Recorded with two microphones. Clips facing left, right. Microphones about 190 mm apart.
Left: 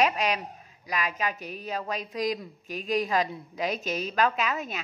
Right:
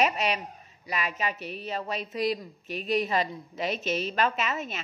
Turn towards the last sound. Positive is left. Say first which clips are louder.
# left 1 dB
turn(degrees=0)  # may be behind; listen again after turning